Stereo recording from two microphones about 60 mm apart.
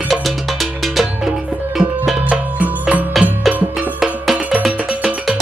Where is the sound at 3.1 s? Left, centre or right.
Centre.